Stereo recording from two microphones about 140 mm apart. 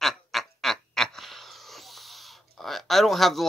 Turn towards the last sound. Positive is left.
turn(degrees=0)  # may be behind; listen again after turning